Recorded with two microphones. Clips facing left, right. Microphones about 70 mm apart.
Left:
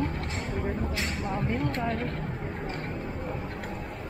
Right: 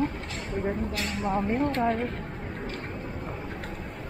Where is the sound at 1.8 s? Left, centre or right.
Centre.